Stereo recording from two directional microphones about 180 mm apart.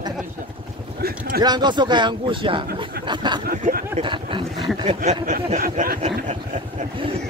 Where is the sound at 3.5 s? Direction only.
55° right (ahead or behind).